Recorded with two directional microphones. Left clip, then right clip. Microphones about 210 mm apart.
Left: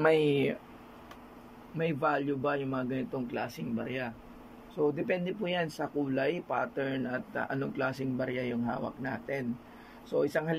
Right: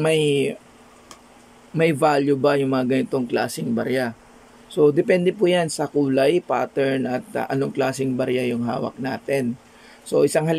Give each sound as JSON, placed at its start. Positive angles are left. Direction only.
{"t": 0.0, "sound": "speech", "side_deg": -10}
{"t": 1.8, "sound": "speech", "side_deg": -20}